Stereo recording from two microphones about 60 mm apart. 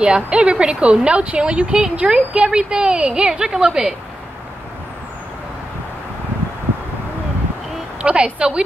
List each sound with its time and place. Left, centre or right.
0.0 s speech: centre
8.0 s speech: centre